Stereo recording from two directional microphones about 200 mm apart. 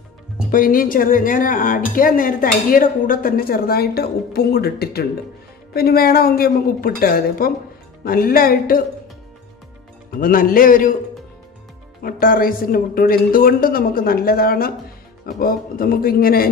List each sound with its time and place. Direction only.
0.5 s speech: 45° left (ahead or behind)
10.1 s speech: 45° left (ahead or behind)
12.0 s speech: 45° left (ahead or behind)